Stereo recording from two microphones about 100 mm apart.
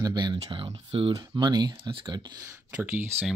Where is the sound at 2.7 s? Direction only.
20° right (ahead or behind).